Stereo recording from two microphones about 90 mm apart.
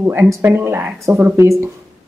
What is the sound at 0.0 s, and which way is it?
A woman's voice, 25° right (ahead or behind).